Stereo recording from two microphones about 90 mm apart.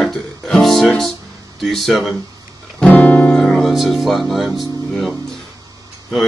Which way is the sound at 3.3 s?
5° left (ahead or behind).